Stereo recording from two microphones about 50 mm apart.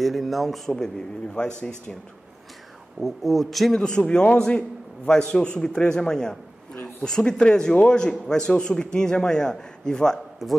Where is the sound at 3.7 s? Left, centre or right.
Centre.